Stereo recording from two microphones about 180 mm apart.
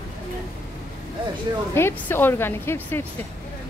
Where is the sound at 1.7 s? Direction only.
15° left (ahead or behind).